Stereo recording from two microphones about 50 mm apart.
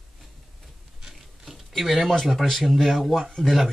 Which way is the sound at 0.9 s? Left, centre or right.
Centre.